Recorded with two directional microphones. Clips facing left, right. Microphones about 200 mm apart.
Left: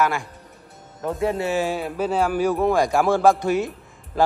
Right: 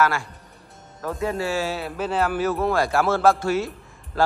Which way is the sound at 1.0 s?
20° left (ahead or behind).